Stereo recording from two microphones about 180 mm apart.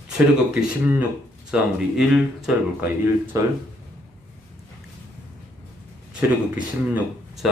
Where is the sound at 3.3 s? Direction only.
15° right (ahead or behind).